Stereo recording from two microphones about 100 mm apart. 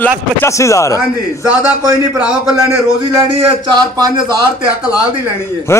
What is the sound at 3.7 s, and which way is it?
Speech, 45° right (ahead or behind).